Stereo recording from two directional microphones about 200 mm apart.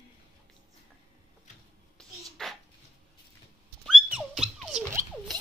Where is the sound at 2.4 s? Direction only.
5° left (ahead or behind).